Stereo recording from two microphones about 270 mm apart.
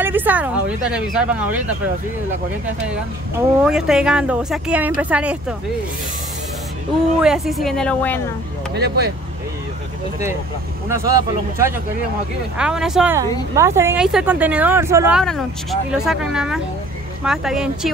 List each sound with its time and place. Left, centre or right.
0.0 s speech: centre
3.6 s speech: centre
7.2 s speech: centre
8.7 s speech: right
10.9 s speech: centre